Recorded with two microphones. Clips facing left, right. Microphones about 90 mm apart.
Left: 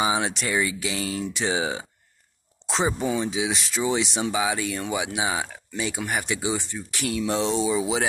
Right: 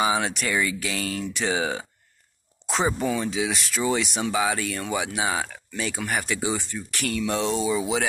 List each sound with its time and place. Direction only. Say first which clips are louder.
0.0 s speech: right 1 dB; 25° left (ahead or behind)